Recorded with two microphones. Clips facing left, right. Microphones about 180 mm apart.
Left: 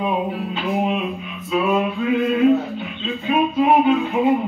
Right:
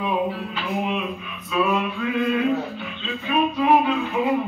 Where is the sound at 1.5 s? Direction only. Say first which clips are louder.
Left 3 dB; 25° left (ahead or behind).